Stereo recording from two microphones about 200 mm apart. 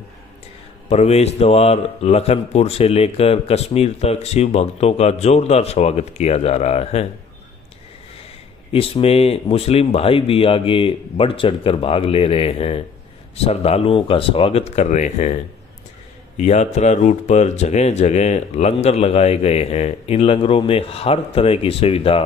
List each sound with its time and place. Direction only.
0.8 s speech: 30° left (ahead or behind)
8.7 s speech: 30° left (ahead or behind)